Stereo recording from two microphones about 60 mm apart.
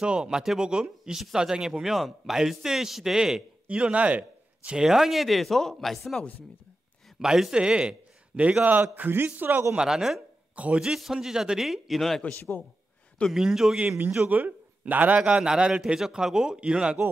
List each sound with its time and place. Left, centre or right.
0.0 s a man's voice: centre
3.6 s a man's voice: centre
4.8 s speech: centre
7.2 s a man's voice: centre; by 9.7 s right
9.8 s a man's voice: centre
10.5 s a sound: right
10.8 s a man's voice: centre
12.4 s a man's voice: left
13.3 s a man's voice: centre
13.7 s a man's voice: right